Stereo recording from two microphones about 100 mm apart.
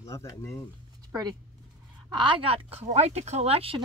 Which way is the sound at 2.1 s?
55° right (ahead or behind).